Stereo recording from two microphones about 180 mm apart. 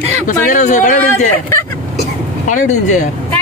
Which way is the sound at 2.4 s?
45° left (ahead or behind).